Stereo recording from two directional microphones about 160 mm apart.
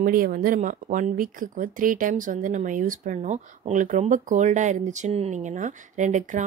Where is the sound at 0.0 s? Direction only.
60° right (ahead or behind).